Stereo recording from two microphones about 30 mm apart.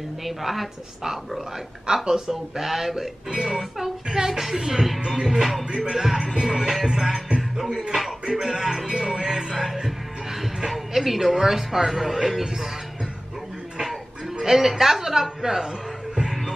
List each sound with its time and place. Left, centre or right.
0.2 s a woman's voice: centre
2.0 s a man's voice: centre
4.1 s a woman's voice: right
6.3 s music: right
7.9 s a sound: centre
8.4 s music: right
10.9 s a man's voice: centre
14.4 s a man's voice: centre